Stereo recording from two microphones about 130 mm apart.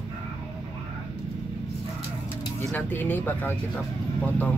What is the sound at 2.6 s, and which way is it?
Speech, 15° left (ahead or behind).